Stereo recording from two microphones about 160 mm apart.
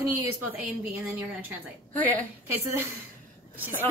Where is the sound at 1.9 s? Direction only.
10° left (ahead or behind).